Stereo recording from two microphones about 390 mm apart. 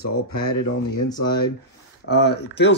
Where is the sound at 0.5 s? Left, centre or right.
Left.